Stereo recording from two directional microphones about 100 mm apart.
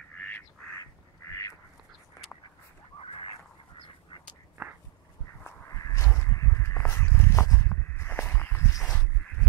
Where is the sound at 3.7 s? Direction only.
65° left (ahead or behind).